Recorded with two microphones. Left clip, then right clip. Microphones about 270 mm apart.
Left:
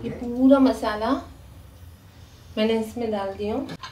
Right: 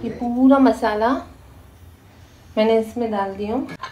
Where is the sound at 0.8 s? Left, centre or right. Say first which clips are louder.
Right 6 dB; centre.